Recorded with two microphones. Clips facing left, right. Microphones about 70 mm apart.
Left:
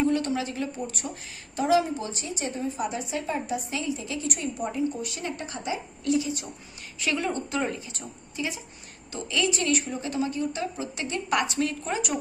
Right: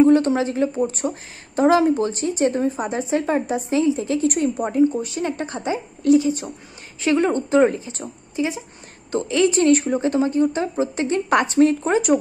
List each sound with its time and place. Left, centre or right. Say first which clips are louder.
0.4 s speech: right 10 dB; right